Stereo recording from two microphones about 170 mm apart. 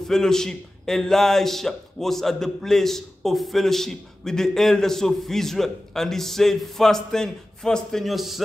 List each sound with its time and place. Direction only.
0.0 s a man's voice: 5° left (ahead or behind)